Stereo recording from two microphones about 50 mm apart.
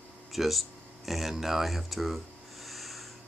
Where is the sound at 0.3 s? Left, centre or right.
Centre.